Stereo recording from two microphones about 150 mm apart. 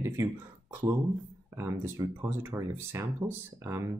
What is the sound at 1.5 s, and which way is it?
Speech, 20° right (ahead or behind).